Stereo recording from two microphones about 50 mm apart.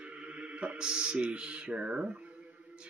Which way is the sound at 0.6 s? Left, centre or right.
Centre.